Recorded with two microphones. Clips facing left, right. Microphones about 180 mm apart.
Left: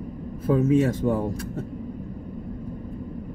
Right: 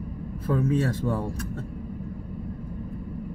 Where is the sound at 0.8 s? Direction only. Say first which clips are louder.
Left 5 dB; 20° left (ahead or behind).